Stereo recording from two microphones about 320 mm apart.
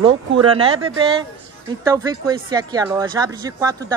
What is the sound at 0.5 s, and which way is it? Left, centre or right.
Speech, centre.